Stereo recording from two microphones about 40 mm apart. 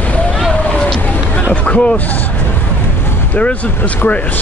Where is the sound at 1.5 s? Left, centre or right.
Left.